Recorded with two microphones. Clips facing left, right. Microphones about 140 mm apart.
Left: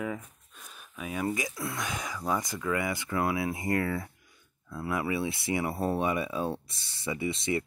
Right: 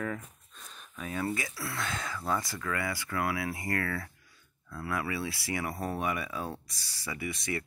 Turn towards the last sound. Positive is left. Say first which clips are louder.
# left 5 dB
turn(degrees=25)  # may be behind; listen again after turning